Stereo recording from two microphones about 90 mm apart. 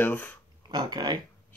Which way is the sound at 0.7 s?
50° right (ahead or behind).